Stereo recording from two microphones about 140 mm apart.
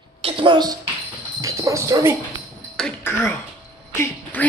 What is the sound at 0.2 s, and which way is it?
Speech, 35° right (ahead or behind).